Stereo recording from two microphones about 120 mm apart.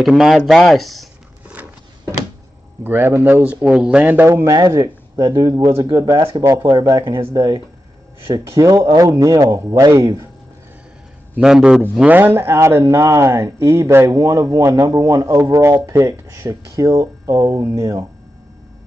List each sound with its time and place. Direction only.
0.0 s speech: centre (ahead or behind)
2.8 s speech: 20° right (ahead or behind)
3.6 s speech: 5° right (ahead or behind); by 6.1 s 30° right (ahead or behind)
6.1 s speech: 45° right (ahead or behind)
6.4 s speech: 25° right (ahead or behind)
11.3 s speech: 5° right (ahead or behind)
11.8 s speech: 15° right (ahead or behind)